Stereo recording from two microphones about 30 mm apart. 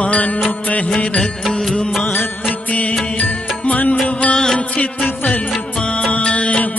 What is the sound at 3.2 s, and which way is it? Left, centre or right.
Music, left.